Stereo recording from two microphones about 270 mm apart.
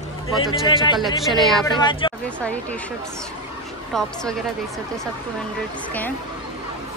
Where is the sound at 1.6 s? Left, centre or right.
Centre.